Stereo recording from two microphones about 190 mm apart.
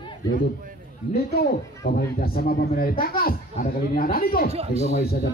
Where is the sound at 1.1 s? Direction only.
55° left (ahead or behind).